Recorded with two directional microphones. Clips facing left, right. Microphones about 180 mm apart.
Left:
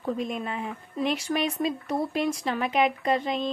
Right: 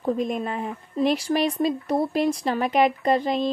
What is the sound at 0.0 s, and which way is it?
Speech, 40° right (ahead or behind).